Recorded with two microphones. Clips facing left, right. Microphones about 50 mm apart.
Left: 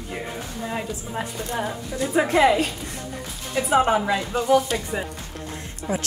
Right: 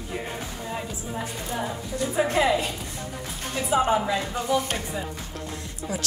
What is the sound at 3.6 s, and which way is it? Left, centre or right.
Speech, left.